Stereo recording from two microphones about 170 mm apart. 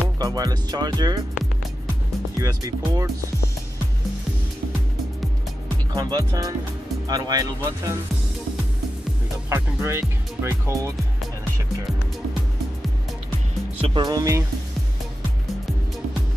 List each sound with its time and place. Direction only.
0.2 s speech: 20° right (ahead or behind)
2.3 s speech: 20° right (ahead or behind)
5.9 s speech: 25° right (ahead or behind)
9.5 s speech: 15° right (ahead or behind)
13.7 s speech: 35° right (ahead or behind)
14.0 s speech: 20° right (ahead or behind)